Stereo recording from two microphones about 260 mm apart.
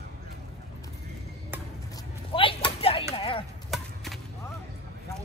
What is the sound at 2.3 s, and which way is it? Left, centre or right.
Whip, centre.